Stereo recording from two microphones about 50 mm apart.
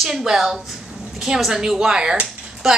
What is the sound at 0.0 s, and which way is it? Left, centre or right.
A woman's voice, centre.